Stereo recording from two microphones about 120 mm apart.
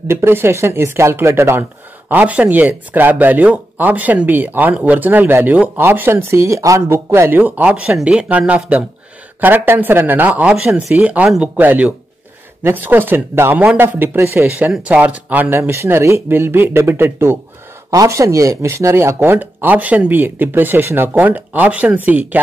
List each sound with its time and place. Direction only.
0.1 s speech: 20° right (ahead or behind)
10.5 s speech: 5° right (ahead or behind)